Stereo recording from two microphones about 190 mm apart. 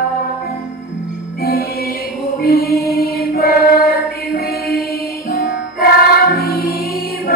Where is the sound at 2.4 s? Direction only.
55° left (ahead or behind).